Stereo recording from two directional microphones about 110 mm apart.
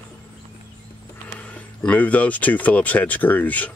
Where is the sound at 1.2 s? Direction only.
10° left (ahead or behind).